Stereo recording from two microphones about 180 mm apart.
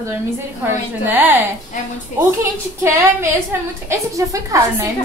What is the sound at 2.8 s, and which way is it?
A woman's voice, 15° right (ahead or behind).